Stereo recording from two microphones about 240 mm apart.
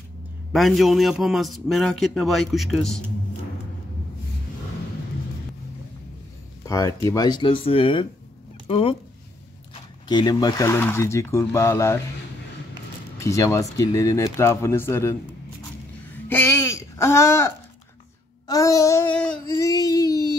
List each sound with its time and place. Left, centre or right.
0.5 s a man's voice: centre
6.7 s speech: centre
10.0 s speech: centre
13.2 s speech: centre
16.3 s speech: centre
18.5 s speech: centre